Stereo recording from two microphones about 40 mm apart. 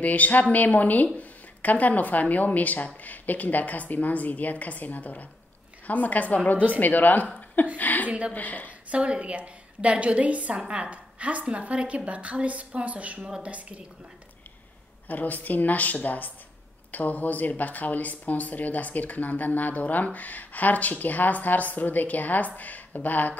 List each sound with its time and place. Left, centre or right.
0.0 s a woman's voice: left
8.9 s a woman's voice: right
15.0 s speech: left